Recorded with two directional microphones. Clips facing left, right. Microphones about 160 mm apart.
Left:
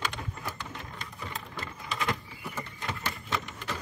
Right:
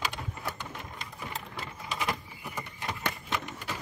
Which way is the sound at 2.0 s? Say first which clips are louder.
Left 1 dB; 10° right (ahead or behind).